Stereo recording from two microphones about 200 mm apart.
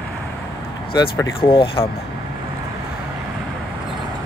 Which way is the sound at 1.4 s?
25° left (ahead or behind).